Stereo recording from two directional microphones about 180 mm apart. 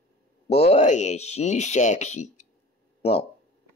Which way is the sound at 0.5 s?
35° left (ahead or behind).